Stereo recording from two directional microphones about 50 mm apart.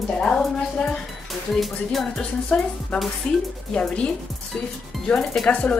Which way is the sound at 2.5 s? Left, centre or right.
Centre.